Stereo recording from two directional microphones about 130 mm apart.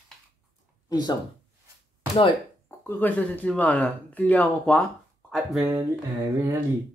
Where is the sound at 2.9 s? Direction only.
15° left (ahead or behind).